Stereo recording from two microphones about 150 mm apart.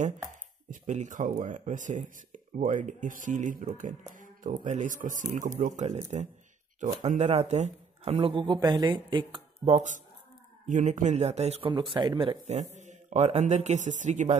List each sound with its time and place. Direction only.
0.7 s speech: 55° right (ahead or behind)
7.1 s speech: 50° right (ahead or behind); by 9.4 s 30° right (ahead or behind)
9.7 s speech: 55° right (ahead or behind); by 12.4 s 30° right (ahead or behind)
12.4 s speech: 50° right (ahead or behind)